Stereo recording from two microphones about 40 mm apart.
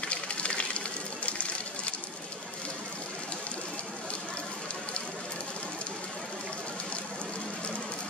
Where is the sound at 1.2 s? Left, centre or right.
Left.